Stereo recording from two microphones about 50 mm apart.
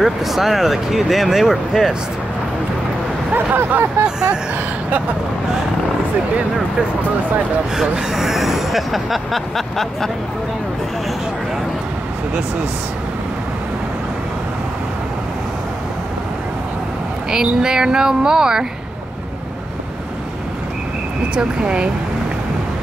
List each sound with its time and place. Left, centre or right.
0.0 s speech: centre
3.3 s speech: right
4.0 s speech: centre
7.7 s speech: centre
17.3 s speech: centre
21.4 s speech: right